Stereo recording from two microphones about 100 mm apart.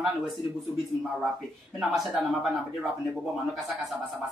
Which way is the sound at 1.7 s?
5° right (ahead or behind).